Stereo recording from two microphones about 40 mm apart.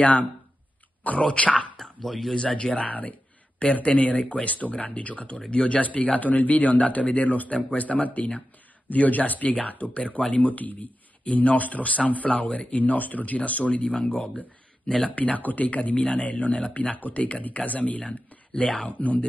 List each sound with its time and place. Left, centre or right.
0.0 s speech: left
1.2 s speech: left
1.8 s speech: centre
2.3 s speech: left
2.9 s speech: left
18.0 s speech: left
18.9 s speech: left